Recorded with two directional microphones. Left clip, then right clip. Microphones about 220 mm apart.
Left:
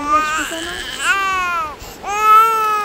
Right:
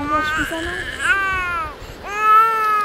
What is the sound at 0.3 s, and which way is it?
Baby cry, 45° left (ahead or behind).